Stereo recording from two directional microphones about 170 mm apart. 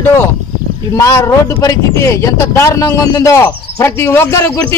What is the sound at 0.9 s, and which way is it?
Speech, 20° left (ahead or behind).